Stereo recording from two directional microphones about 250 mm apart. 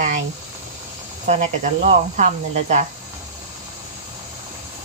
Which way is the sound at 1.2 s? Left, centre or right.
Right.